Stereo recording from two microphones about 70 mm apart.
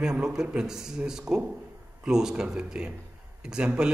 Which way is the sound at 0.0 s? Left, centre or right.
Centre.